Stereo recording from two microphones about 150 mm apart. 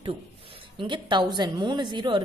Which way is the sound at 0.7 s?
30° right (ahead or behind).